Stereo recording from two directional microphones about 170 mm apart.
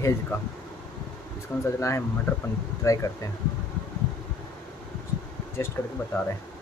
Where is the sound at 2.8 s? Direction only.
20° left (ahead or behind).